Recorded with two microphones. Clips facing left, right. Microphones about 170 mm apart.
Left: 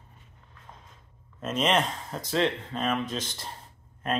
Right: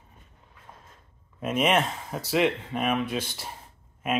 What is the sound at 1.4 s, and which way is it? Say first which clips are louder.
Speech: right 2 dB; 10° right (ahead or behind).